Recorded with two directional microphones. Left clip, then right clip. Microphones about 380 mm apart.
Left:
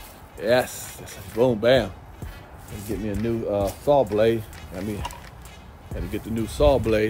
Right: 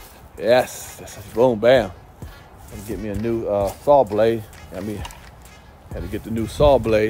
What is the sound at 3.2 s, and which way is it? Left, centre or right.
Speech, centre.